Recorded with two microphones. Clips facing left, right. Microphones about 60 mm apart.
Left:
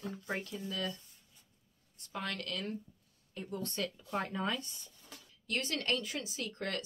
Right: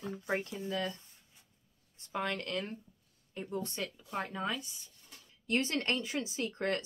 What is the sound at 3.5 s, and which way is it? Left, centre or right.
Speech, centre.